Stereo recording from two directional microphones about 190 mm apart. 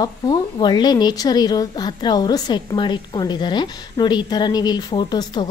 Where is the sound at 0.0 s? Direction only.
20° left (ahead or behind).